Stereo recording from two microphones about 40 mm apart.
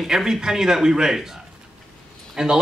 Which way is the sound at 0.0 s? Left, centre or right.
Centre.